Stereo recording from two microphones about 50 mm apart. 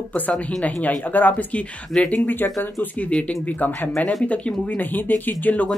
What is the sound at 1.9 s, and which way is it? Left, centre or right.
Speech, centre.